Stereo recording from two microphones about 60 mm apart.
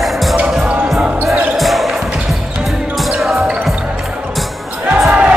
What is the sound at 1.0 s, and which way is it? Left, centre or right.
Basketball bounce, right.